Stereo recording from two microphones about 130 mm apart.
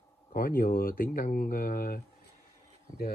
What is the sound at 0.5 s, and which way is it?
Speech, 90° left.